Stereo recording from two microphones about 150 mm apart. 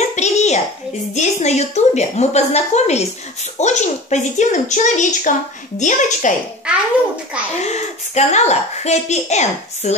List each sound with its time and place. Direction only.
0.1 s a sound: 50° left (ahead or behind)
1.1 s a woman's voice: 50° left (ahead or behind)
7.5 s speech: 50° left (ahead or behind)